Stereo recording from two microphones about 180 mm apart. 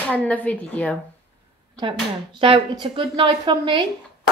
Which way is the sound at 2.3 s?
30° right (ahead or behind).